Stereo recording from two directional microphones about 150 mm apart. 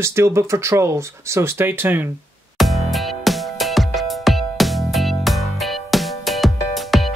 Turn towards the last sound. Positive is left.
turn(degrees=0)  # may be behind; listen again after turning